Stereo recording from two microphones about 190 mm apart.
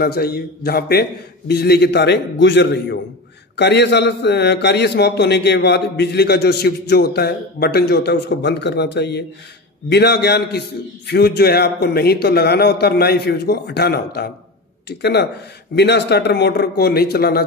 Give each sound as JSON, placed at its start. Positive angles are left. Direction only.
{"t": 0.0, "sound": "a man's voice", "side_deg": 55}